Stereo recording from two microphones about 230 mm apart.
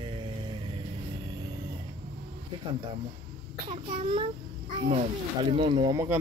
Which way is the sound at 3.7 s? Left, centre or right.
Right.